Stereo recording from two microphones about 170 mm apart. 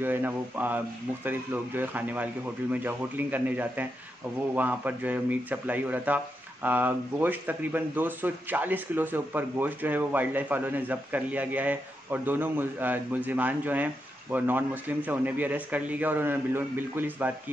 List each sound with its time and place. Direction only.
0.0 s speech: 10° right (ahead or behind)